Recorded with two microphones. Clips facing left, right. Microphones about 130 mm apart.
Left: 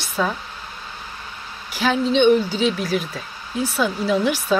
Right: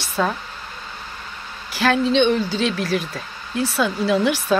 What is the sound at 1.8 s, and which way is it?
Speech, 5° left (ahead or behind).